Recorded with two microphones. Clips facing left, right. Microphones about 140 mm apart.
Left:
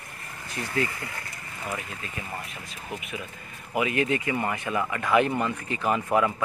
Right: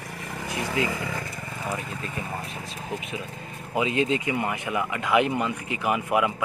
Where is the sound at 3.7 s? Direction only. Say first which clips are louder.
Right 1 dB; 20° right (ahead or behind).